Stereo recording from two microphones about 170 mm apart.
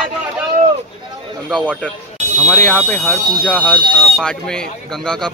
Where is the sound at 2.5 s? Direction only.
5° left (ahead or behind).